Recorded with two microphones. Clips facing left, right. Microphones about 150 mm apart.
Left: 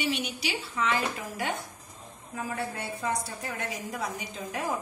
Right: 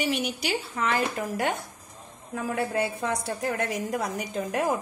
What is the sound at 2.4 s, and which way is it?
A woman's voice, 65° right (ahead or behind).